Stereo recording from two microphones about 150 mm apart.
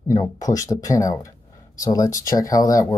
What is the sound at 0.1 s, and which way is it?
Speech, 25° left (ahead or behind).